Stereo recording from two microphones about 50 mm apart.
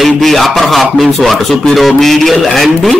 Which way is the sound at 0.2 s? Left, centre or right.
Centre.